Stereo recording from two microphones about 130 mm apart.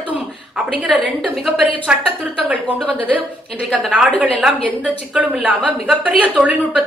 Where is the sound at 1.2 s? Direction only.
Centre (ahead or behind).